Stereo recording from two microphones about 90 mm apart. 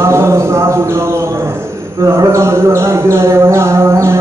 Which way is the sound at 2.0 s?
35° right (ahead or behind).